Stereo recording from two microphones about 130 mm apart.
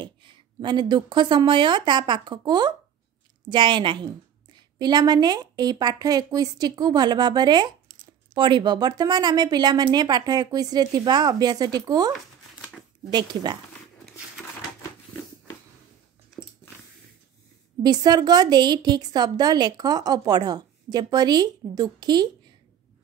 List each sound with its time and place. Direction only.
0.0 s a woman's voice: 35° right (ahead or behind)
13.1 s a woman's voice: 35° right (ahead or behind)
17.8 s a woman's voice: 30° right (ahead or behind)